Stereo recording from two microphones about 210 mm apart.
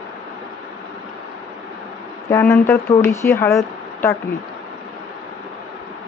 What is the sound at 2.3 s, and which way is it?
Speech, 10° left (ahead or behind).